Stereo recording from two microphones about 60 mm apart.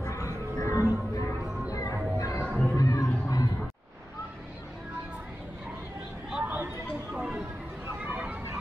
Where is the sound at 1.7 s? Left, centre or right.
Left.